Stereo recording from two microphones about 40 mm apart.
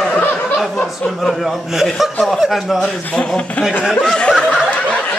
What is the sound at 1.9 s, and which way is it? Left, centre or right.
Speech, centre.